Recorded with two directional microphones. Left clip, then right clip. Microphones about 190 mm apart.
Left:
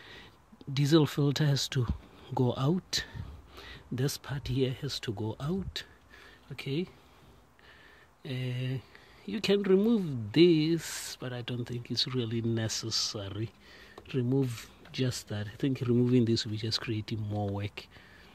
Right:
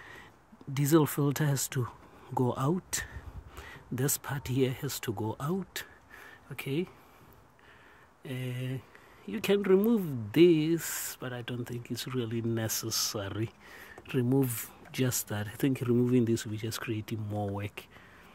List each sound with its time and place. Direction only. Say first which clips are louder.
0.0 s a sound: right 1 dB; 10° left (ahead or behind)
0.7 s speech: even; 10° left (ahead or behind)
8.2 s speech: left 1 dB; 15° left (ahead or behind); by 15.8 s centre (ahead or behind)
15.8 s speech: left 1 dB; 10° left (ahead or behind)